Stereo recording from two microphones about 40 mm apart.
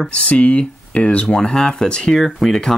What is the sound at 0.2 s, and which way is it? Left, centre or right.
Speech, left.